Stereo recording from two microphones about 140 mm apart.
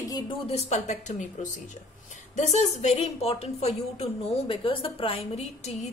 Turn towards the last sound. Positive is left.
turn(degrees=50)  # may be behind; listen again after turning